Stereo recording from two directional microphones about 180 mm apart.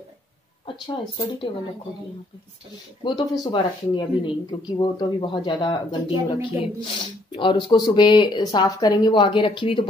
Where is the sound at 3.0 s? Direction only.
25° left (ahead or behind).